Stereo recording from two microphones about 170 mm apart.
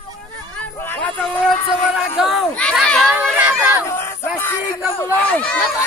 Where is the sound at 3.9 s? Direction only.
15° left (ahead or behind).